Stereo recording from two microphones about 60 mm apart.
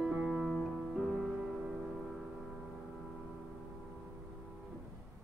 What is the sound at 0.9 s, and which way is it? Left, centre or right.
Music, centre.